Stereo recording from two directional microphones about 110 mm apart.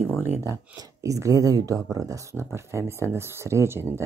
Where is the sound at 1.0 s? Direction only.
30° right (ahead or behind).